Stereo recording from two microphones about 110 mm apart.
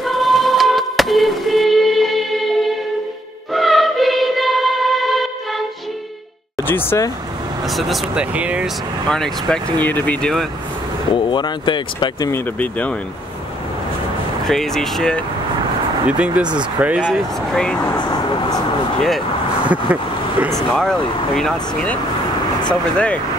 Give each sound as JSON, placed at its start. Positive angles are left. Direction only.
{"t": 0.0, "sound": "music", "side_deg": 0}
{"t": 3.5, "sound": "music", "side_deg": 0}
{"t": 6.7, "sound": "speech", "side_deg": 20}
{"t": 7.6, "sound": "speech", "side_deg": 0}
{"t": 9.1, "sound": "speech", "side_deg": 5}
{"t": 11.1, "sound": "speech", "side_deg": 45}
{"t": 12.5, "sound": "speech", "side_deg": 10}
{"t": 14.5, "sound": "speech", "side_deg": 5}
{"t": 16.1, "sound": "speech", "side_deg": -10}
{"t": 17.1, "sound": "speech", "side_deg": 5}
{"t": 17.9, "sound": "speech", "side_deg": 40}
{"t": 19.7, "sound": "speech", "side_deg": -15}
{"t": 20.5, "sound": "speech", "side_deg": 5}